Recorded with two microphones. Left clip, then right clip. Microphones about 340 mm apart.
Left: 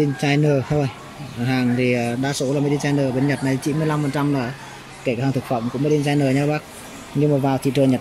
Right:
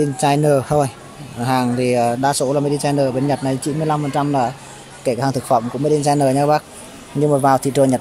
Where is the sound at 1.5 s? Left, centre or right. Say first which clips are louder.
Right 3 dB; centre.